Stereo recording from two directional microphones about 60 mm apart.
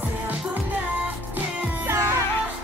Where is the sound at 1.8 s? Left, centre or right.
Right.